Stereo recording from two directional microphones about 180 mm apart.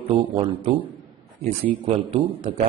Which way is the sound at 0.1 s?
25° right (ahead or behind).